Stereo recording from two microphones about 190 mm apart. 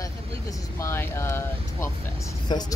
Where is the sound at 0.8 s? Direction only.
15° left (ahead or behind).